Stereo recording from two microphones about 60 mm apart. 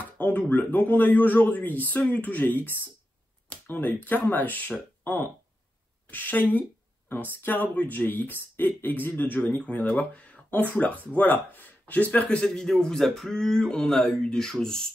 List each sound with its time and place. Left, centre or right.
0.0 s speech: left
12.4 s speech: centre